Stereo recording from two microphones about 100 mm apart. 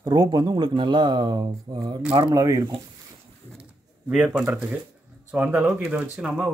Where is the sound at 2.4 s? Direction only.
35° right (ahead or behind).